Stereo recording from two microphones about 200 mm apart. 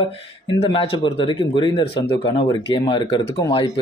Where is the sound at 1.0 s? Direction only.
25° left (ahead or behind).